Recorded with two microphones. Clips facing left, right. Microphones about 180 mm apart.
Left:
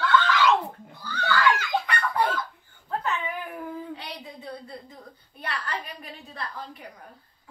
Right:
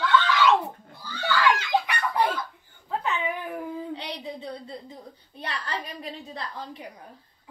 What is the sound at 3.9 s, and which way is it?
A woman's voice, 30° right (ahead or behind).